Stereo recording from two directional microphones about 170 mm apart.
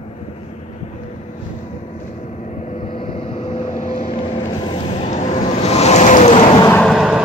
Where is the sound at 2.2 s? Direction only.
45° left (ahead or behind).